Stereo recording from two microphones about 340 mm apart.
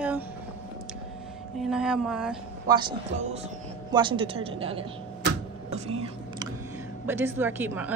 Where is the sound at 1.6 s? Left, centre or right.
Centre.